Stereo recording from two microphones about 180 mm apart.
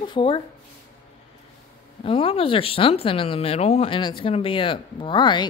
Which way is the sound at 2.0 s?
30° left (ahead or behind).